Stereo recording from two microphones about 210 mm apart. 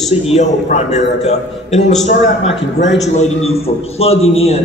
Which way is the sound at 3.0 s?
30° left (ahead or behind).